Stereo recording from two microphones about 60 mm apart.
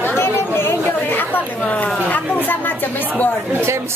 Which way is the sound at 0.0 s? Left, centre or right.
Left.